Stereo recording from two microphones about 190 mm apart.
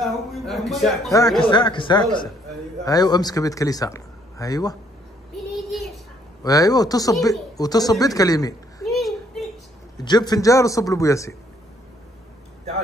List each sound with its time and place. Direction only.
0.0 s a man's voice: centre (ahead or behind)
1.4 s a man's voice: 25° left (ahead or behind)
5.5 s child singing: centre (ahead or behind)
6.4 s a man's voice: 20° left (ahead or behind)
8.8 s a sound: centre (ahead or behind)
9.9 s a man's voice: 20° left (ahead or behind)